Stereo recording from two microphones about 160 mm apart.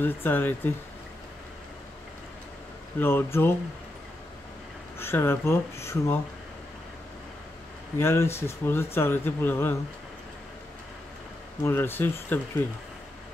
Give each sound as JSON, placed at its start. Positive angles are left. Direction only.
{"t": 0.0, "sound": "speech", "side_deg": 15}
{"t": 3.0, "sound": "speech", "side_deg": 15}
{"t": 4.9, "sound": "speech", "side_deg": 15}
{"t": 8.0, "sound": "speech", "side_deg": 15}
{"t": 11.6, "sound": "speech", "side_deg": 15}